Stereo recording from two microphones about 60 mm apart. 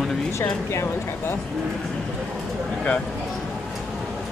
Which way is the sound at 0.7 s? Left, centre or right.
Left.